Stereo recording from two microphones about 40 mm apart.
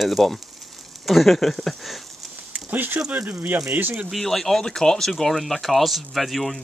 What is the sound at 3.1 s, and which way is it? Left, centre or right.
Speech, right.